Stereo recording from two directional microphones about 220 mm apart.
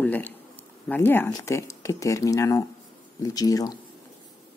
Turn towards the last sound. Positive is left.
turn(degrees=15)  # may be behind; listen again after turning